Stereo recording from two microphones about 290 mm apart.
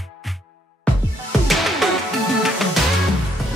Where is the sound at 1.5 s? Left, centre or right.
Centre.